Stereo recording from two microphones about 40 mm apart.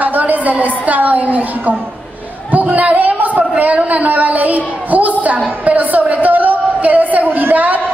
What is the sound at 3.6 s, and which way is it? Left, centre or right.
A woman's voice, right.